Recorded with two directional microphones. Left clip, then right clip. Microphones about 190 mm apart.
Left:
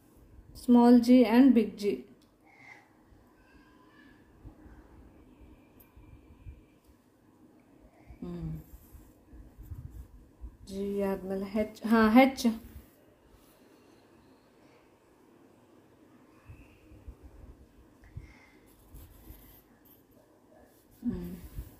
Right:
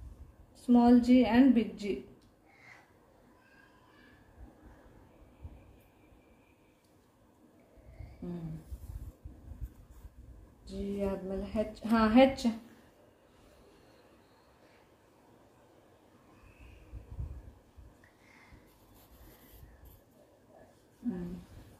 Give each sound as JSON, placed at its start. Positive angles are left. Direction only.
{"t": 0.7, "sound": "a woman's voice", "side_deg": 40}
{"t": 10.7, "sound": "a woman's voice", "side_deg": 40}